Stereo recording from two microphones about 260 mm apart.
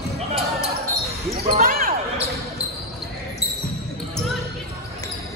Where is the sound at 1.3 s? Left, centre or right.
Right.